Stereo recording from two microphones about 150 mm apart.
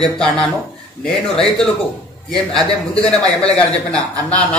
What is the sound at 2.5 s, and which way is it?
Speech, 25° right (ahead or behind).